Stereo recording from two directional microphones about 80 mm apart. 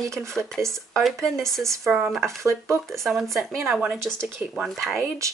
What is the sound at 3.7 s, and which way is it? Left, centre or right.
Speech, centre.